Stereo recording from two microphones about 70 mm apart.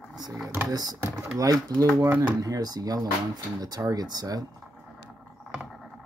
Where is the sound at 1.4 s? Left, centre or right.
Right.